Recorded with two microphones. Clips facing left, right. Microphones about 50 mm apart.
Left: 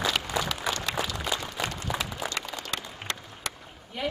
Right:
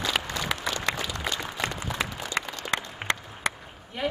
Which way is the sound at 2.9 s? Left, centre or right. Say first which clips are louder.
Right 6 dB; right.